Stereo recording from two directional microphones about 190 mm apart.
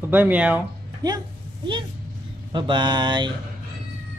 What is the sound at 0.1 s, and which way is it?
Speech, 10° right (ahead or behind).